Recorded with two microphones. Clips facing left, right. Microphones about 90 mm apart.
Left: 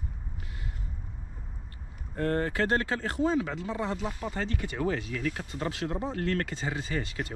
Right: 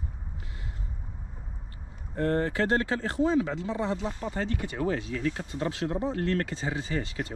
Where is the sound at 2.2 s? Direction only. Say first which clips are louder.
Right 2 dB; 30° right (ahead or behind).